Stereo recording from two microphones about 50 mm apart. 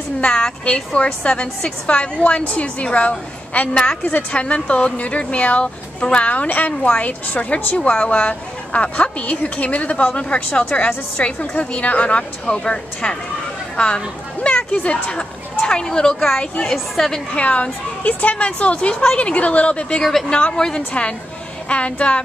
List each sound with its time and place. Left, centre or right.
0.2 s a woman's voice: centre
16.7 s a woman's voice: centre
17.3 s a woman's voice: left
20.0 s a woman's voice: centre
20.2 s a woman's voice: left
21.6 s a woman's voice: left